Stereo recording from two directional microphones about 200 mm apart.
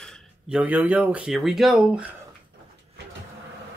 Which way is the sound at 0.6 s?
5° right (ahead or behind).